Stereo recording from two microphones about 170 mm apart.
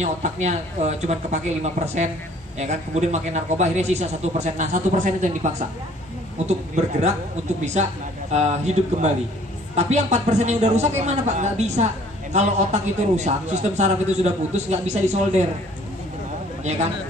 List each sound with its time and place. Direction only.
0.0 s a man's voice: 45° right (ahead or behind)